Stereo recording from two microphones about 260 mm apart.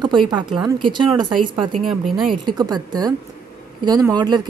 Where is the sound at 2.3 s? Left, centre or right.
Centre.